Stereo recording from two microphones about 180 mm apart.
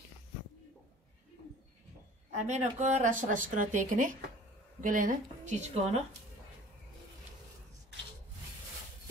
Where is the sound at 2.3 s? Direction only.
40° right (ahead or behind).